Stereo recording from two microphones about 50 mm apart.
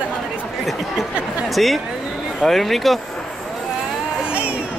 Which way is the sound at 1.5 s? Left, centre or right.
Centre.